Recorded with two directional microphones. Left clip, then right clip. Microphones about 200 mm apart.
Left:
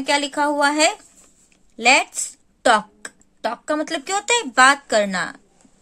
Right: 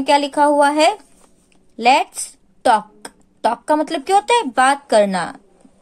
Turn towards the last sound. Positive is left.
turn(degrees=10)  # may be behind; listen again after turning